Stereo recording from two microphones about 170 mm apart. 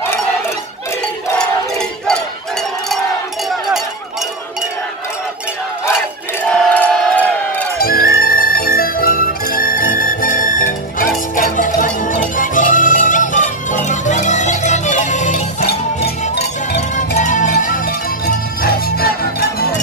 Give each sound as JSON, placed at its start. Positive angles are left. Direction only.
{"t": 1.4, "sound": "a sound", "side_deg": 5}
{"t": 6.4, "sound": "crowd", "side_deg": 10}
{"t": 7.8, "sound": "music", "side_deg": 60}
{"t": 17.2, "sound": "music", "side_deg": 50}